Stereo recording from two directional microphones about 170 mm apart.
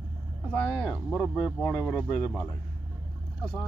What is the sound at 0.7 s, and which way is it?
Speech, centre (ahead or behind).